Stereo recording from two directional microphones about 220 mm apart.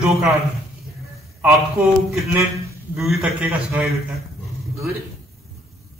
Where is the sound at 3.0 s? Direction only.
Centre (ahead or behind).